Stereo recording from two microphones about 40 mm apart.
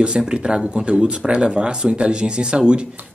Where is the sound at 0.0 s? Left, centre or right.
Right.